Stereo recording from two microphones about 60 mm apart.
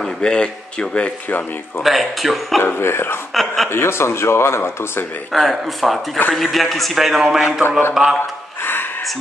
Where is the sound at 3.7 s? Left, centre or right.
Left.